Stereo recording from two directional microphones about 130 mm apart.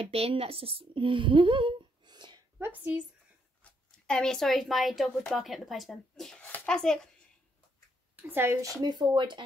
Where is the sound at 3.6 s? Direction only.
5° left (ahead or behind).